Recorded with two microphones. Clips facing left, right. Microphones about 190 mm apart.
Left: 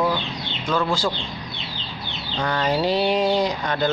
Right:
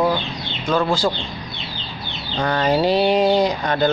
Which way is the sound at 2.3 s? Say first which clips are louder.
Right 4 dB; 50° right (ahead or behind).